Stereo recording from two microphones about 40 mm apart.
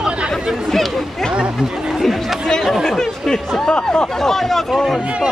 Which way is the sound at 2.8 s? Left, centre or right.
Centre.